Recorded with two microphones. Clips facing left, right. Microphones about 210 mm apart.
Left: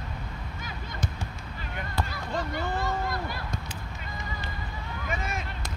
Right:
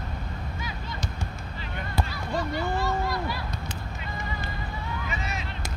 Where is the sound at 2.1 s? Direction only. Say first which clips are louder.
Right 2 dB; 50° left (ahead or behind).